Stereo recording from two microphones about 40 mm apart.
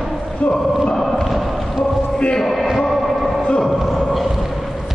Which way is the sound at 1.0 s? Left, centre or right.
Centre.